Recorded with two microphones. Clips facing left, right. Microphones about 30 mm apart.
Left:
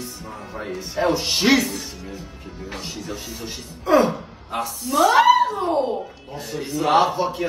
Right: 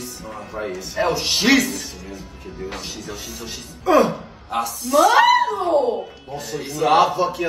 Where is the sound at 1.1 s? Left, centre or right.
Right.